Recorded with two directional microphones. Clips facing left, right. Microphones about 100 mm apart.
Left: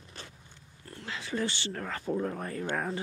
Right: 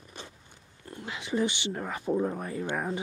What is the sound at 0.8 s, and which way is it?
Speech, 20° right (ahead or behind).